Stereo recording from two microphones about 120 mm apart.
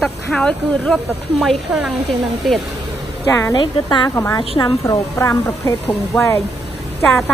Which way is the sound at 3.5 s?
40° left (ahead or behind).